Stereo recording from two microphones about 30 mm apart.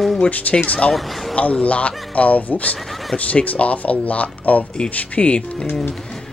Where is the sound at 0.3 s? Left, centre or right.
Left.